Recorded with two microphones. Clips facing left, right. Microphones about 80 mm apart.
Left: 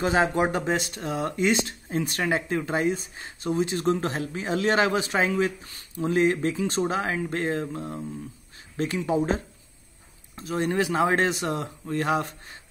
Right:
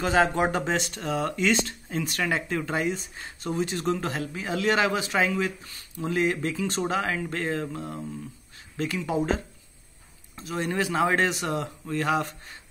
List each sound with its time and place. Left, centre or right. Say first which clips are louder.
0.0 s speech: even; left
0.4 s speech: left 1 dB; centre
10.4 s speech: left 3 dB; left